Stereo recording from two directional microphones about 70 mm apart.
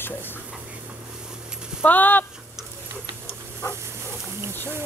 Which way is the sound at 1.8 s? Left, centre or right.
Left.